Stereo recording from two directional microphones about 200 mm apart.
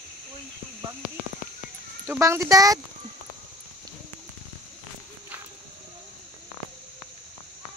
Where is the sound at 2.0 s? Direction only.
10° right (ahead or behind).